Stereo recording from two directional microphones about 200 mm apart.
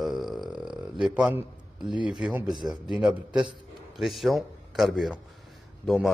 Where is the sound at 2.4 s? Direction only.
20° right (ahead or behind).